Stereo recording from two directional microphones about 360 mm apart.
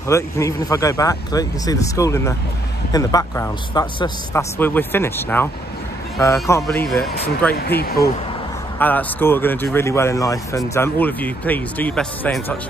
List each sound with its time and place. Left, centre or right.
0.1 s a man's voice: centre
7.5 s speech: left
8.7 s speech: centre